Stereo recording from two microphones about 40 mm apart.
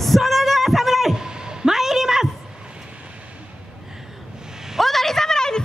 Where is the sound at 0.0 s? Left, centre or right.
Centre.